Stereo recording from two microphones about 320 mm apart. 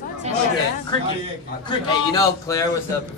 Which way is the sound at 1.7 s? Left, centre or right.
Centre.